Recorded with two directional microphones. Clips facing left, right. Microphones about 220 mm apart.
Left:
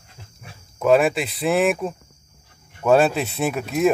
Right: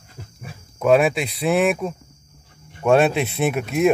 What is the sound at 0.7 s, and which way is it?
Speech, centre (ahead or behind).